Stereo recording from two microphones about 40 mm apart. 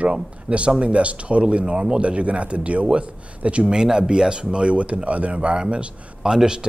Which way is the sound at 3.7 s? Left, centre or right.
Centre.